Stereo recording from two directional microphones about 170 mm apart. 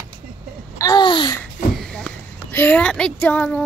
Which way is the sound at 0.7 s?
20° left (ahead or behind).